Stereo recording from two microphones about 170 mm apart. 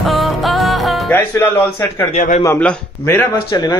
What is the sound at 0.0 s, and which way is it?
Music, centre (ahead or behind).